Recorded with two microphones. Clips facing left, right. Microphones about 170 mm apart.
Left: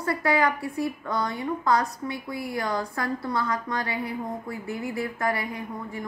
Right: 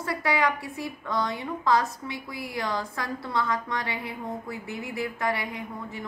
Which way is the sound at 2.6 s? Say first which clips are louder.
Left 1 dB; centre (ahead or behind).